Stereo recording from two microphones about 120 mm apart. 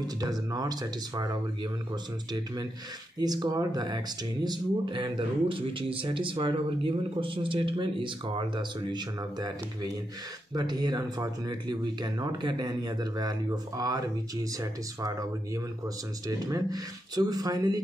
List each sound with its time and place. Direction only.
0.0 s speech: 30° right (ahead or behind)